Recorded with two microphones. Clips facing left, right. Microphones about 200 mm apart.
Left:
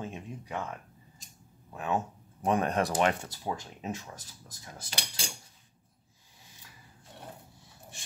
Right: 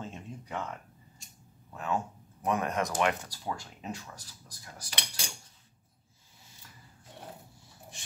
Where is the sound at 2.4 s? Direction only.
30° left (ahead or behind).